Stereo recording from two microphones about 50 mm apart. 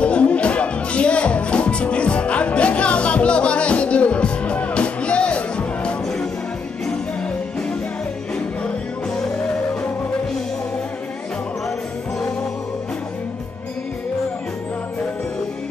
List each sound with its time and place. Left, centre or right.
0.0 s music: left
8.6 s music: centre